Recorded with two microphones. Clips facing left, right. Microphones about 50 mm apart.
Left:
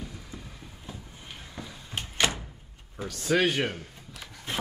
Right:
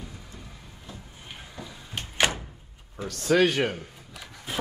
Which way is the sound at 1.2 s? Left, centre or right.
Centre.